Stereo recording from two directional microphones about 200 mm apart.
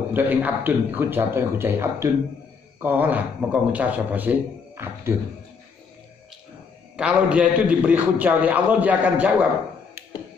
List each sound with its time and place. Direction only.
0.1 s a man's voice: 10° right (ahead or behind)
7.0 s a man's voice: 5° right (ahead or behind)